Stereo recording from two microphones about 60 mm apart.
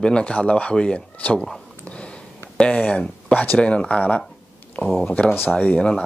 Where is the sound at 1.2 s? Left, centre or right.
Left.